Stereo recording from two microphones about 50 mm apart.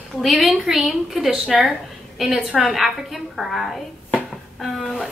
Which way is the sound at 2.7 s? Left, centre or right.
Centre.